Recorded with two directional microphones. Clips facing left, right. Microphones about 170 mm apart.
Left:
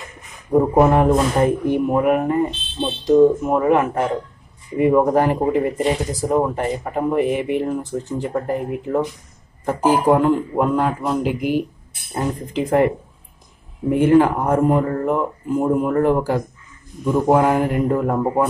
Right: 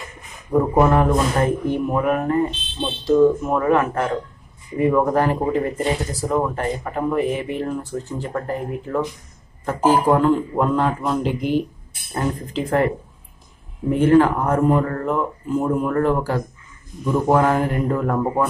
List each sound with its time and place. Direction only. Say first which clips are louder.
0.5 s speech: left 2 dB; 20° left (ahead or behind)
5.8 s speech: left 2 dB; centre (ahead or behind)
6.0 s speech: left 3 dB; 15° left (ahead or behind)